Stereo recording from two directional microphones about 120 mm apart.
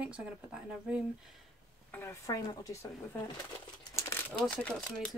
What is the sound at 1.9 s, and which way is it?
Speech, 20° left (ahead or behind).